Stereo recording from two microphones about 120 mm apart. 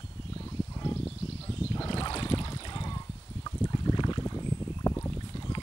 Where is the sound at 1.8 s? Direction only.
45° left (ahead or behind).